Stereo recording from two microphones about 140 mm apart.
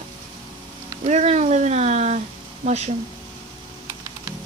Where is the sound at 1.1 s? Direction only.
55° right (ahead or behind).